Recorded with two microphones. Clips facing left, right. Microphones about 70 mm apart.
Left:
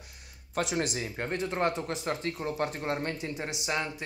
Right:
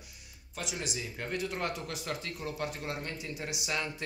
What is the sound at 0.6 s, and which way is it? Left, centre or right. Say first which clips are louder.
Speech: left 8 dB; left.